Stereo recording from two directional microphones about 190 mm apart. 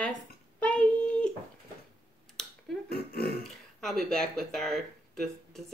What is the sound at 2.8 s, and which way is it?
Speech, 55° left (ahead or behind).